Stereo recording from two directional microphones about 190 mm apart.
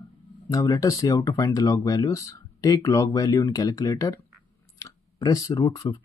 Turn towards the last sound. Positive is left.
turn(degrees=20)  # may be behind; listen again after turning